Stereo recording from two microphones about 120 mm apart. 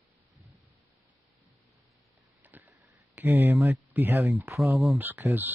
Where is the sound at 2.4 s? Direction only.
15° right (ahead or behind).